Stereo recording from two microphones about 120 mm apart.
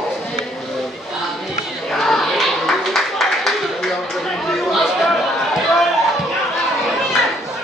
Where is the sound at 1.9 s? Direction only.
Centre (ahead or behind).